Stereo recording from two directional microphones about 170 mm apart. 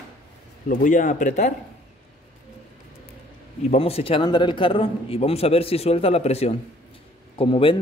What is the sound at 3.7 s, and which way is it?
Speech, 35° left (ahead or behind).